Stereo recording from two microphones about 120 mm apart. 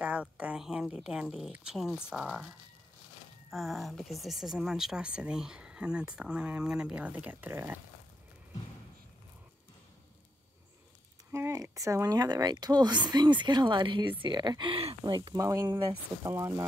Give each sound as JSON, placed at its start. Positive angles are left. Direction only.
{"t": 0.0, "sound": "speech", "side_deg": -10}
{"t": 11.3, "sound": "speech", "side_deg": -25}
{"t": 15.0, "sound": "speech", "side_deg": -35}